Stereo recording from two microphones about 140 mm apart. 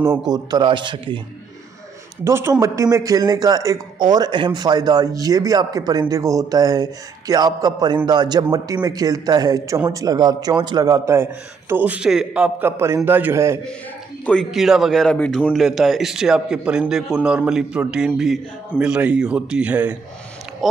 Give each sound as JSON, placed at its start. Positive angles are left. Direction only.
{"t": 0.3, "sound": "speech", "side_deg": -30}
{"t": 2.2, "sound": "a man's voice", "side_deg": -20}
{"t": 11.7, "sound": "a man's voice", "side_deg": -10}
{"t": 14.2, "sound": "a man's voice", "side_deg": 5}